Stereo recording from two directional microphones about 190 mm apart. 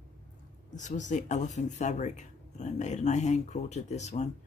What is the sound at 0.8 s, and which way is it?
Speech, 40° left (ahead or behind).